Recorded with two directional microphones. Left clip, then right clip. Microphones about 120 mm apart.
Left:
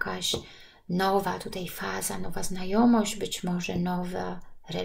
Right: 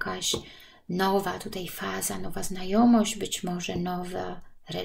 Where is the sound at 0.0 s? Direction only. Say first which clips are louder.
Even; 35° right (ahead or behind).